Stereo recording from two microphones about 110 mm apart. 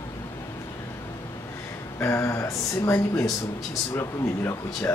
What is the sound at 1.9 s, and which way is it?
Speech, 25° left (ahead or behind).